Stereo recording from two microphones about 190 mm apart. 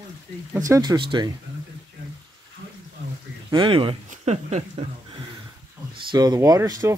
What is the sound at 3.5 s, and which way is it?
Speech, 25° right (ahead or behind).